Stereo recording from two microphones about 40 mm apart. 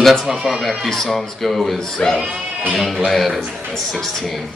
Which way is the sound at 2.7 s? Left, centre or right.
Centre.